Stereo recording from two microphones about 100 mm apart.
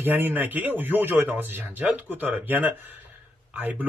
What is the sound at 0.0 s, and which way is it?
Speech, 20° right (ahead or behind).